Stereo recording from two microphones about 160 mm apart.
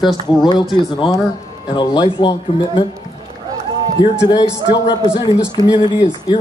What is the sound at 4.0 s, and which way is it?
Speech, 25° left (ahead or behind).